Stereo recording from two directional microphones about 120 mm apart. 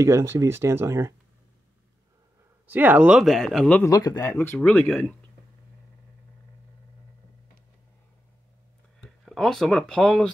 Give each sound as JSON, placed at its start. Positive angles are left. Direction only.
{"t": 0.0, "sound": "speech", "side_deg": -25}
{"t": 2.6, "sound": "speech", "side_deg": -15}
{"t": 3.9, "sound": "speech", "side_deg": 30}
{"t": 9.0, "sound": "speech", "side_deg": 5}